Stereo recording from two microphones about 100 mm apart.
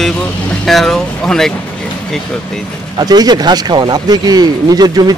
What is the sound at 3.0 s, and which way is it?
Speech, 40° right (ahead or behind).